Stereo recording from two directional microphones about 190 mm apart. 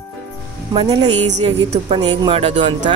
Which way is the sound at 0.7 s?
20° right (ahead or behind).